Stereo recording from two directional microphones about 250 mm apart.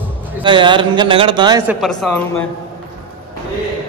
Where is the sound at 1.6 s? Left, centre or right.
Centre.